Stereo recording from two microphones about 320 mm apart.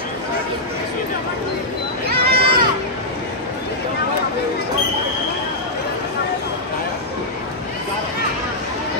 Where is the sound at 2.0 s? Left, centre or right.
Right.